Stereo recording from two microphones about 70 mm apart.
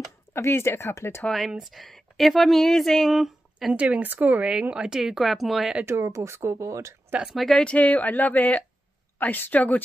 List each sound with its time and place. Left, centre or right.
0.3 s speech: left
1.6 s speech: centre
3.7 s speech: centre
4.5 s speech: centre
5.9 s speech: right
7.2 s speech: centre
7.5 s speech: centre